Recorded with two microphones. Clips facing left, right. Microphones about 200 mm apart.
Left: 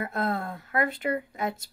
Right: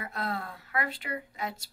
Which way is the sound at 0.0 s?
50° left (ahead or behind).